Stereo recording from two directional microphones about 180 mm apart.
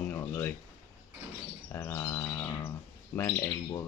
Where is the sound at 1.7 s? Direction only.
15° left (ahead or behind).